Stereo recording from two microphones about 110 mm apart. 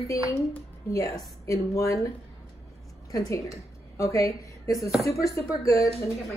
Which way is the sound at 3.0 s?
30° left (ahead or behind).